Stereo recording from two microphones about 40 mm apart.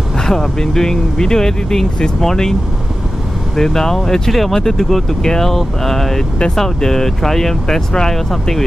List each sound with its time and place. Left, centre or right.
0.2 s speech: centre
3.5 s speech: centre